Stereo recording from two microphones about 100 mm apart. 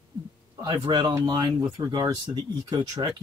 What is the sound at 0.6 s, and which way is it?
Speech, 45° right (ahead or behind).